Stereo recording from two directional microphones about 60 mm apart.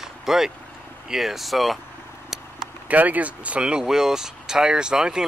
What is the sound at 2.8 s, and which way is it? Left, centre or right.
Speech, right.